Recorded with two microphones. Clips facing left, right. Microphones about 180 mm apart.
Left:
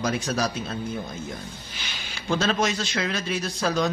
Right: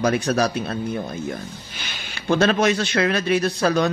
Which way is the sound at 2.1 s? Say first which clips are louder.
Right 6 dB; 60° right (ahead or behind).